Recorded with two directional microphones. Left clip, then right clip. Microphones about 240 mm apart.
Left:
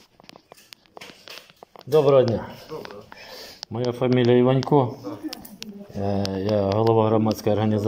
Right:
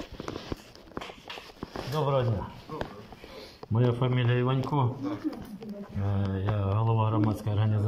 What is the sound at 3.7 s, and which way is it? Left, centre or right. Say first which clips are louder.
Speech: left 7 dB; left.